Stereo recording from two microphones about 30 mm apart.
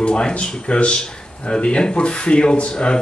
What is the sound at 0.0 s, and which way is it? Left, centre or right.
A man's voice, left.